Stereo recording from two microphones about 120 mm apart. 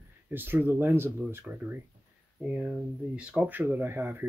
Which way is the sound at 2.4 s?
5° right (ahead or behind).